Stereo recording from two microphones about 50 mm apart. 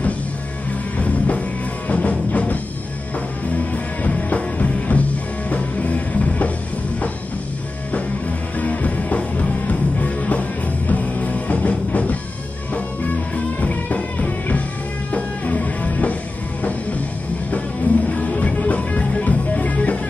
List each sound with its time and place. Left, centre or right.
0.9 s music: left
7.9 s music: left
13.6 s music: left
17.5 s music: left